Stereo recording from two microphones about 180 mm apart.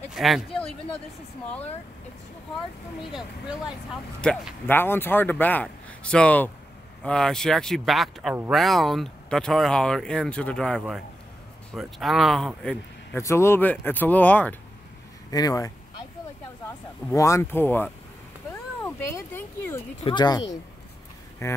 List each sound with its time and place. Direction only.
0.1 s speech: centre (ahead or behind)
3.0 s speech: 5° right (ahead or behind)
4.2 s speech: 10° left (ahead or behind)
13.2 s speech: 15° left (ahead or behind)
15.3 s speech: 20° left (ahead or behind)
17.1 s speech: 15° left (ahead or behind)